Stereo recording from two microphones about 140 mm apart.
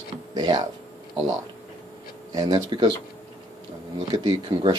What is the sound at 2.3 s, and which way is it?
Speech, 30° right (ahead or behind).